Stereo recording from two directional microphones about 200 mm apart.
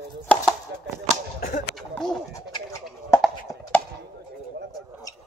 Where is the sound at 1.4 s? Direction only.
50° left (ahead or behind).